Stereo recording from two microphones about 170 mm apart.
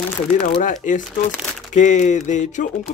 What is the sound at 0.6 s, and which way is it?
Speech, 50° left (ahead or behind).